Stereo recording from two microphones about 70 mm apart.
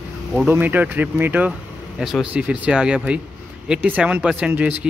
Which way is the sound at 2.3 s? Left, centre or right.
Centre.